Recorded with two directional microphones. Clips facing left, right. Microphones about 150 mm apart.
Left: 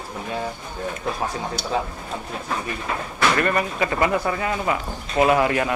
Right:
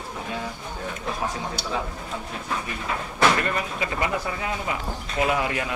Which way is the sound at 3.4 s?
60° left (ahead or behind).